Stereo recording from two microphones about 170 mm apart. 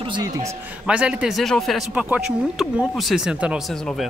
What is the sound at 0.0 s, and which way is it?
Speech, 25° right (ahead or behind).